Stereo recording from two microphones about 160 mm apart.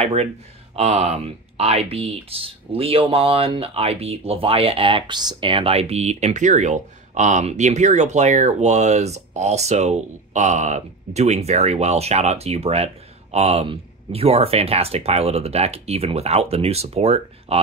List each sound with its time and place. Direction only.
0.0 s speech: 40° right (ahead or behind)